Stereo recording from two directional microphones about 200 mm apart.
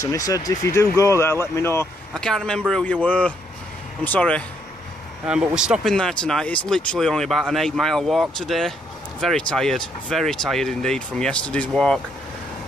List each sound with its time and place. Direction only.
0.0 s speech: 15° left (ahead or behind)
5.2 s speech: 5° right (ahead or behind)